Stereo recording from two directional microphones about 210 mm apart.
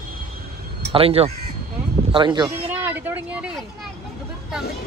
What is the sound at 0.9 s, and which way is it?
Speech, 30° right (ahead or behind).